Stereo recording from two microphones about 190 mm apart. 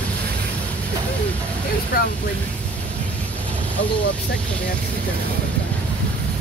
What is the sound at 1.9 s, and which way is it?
Speech, 50° left (ahead or behind).